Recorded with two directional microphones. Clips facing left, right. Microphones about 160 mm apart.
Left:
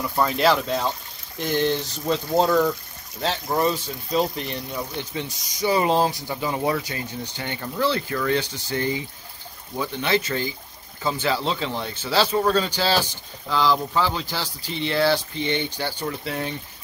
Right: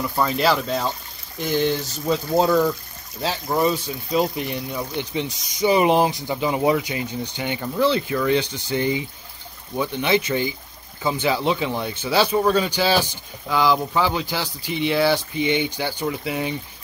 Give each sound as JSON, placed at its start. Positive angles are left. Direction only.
{"t": 0.1, "sound": "speech", "side_deg": 0}